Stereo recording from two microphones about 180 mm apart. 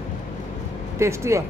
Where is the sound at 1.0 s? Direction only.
15° right (ahead or behind).